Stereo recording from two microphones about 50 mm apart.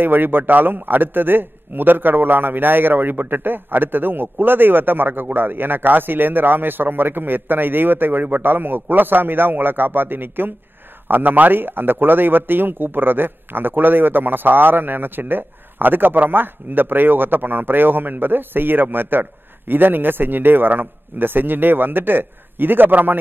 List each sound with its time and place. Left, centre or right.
0.0 s a man's voice: right